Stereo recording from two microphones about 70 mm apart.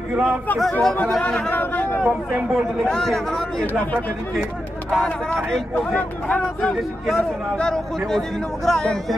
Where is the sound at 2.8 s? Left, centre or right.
Centre.